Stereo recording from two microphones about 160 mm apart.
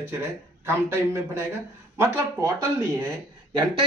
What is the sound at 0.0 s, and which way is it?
Speech, 15° right (ahead or behind).